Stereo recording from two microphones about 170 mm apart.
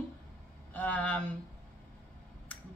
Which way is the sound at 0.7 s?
10° left (ahead or behind).